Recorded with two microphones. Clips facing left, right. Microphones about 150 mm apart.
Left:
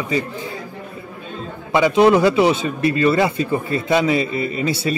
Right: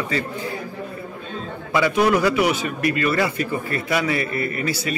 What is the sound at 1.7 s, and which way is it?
Speech, 20° left (ahead or behind).